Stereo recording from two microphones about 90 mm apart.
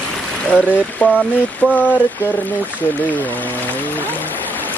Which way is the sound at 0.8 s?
15° left (ahead or behind).